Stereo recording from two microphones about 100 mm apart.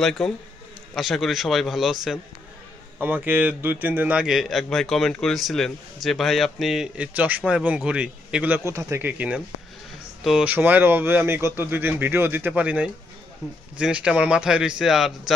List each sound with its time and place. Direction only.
0.0 s a man's voice: 5° left (ahead or behind)
3.0 s a man's voice: 20° right (ahead or behind)
7.2 s a man's voice: 15° right (ahead or behind)
8.6 s speech: 30° right (ahead or behind)
10.4 s a man's voice: 15° right (ahead or behind)